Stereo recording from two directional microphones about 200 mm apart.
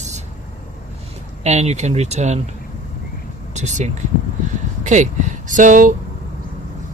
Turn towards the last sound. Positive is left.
turn(degrees=-40)  # may be behind; listen again after turning